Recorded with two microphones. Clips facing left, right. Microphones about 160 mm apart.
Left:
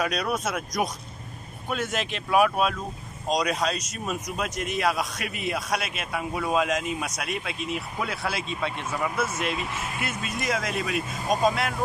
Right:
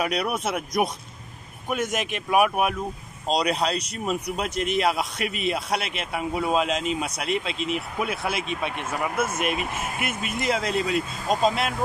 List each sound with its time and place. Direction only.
0.0 s speech: 25° right (ahead or behind)
1.7 s speech: 15° right (ahead or behind)
3.3 s speech: 30° right (ahead or behind)
8.7 s speech: 50° right (ahead or behind)
9.9 s speech: 20° right (ahead or behind)